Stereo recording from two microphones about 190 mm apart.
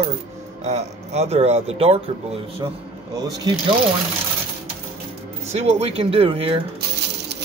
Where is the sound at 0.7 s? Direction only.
35° right (ahead or behind).